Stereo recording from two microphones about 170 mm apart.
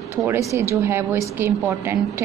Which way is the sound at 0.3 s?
15° right (ahead or behind).